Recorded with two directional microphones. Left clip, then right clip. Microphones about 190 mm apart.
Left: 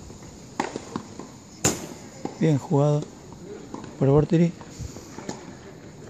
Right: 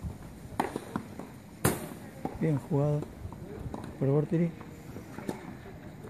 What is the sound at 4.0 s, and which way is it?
Speech, 35° left (ahead or behind).